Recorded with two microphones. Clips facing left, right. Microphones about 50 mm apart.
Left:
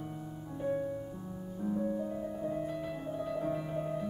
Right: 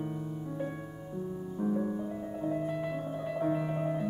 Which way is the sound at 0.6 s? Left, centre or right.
Right.